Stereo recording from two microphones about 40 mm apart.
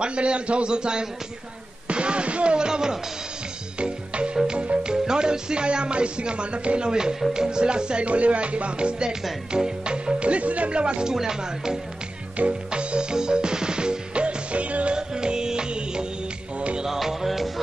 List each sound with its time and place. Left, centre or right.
0.0 s speech: right
3.8 s music: right
7.3 s speech: centre
8.1 s music: right
9.5 s speech: centre
11.1 s speech: centre
12.4 s music: right
15.0 s music: centre
16.5 s finger snapping: right
16.8 s music: centre